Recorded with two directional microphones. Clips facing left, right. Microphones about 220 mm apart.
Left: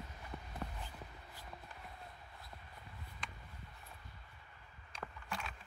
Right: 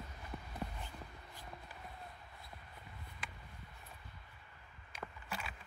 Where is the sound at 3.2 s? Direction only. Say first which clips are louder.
Even; 5° right (ahead or behind).